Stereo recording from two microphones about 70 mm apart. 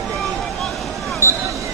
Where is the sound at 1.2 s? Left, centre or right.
Right.